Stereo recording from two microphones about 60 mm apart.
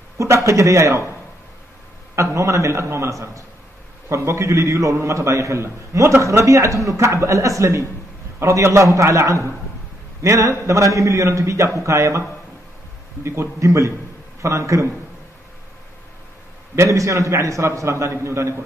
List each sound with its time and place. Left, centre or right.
0.2 s a man's voice: right
2.3 s a man's voice: right
16.7 s a man's voice: right